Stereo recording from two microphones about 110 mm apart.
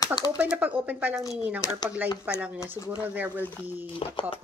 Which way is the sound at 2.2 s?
15° right (ahead or behind).